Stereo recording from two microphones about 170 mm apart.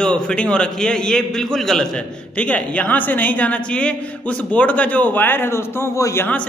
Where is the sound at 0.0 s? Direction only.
5° left (ahead or behind).